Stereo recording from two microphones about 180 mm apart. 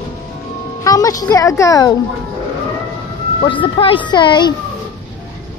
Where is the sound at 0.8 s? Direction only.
20° left (ahead or behind).